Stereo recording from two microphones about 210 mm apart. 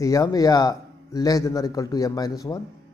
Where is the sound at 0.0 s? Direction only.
15° left (ahead or behind).